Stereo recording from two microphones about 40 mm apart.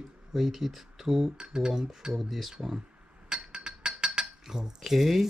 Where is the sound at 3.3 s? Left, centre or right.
Right.